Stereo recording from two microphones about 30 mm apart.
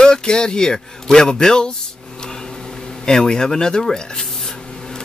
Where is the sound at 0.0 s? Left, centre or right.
Left.